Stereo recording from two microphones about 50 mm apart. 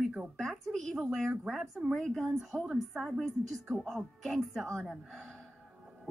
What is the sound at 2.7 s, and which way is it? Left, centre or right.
A woman's voice, centre.